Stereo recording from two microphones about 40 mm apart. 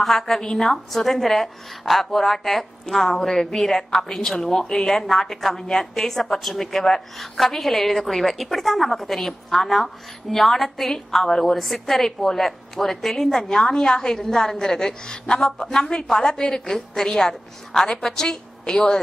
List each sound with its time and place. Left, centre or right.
0.0 s a woman's voice: centre
13.4 s a woman's voice: centre